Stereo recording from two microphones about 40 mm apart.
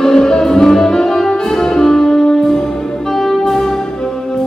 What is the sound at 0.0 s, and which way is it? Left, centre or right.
Music, centre.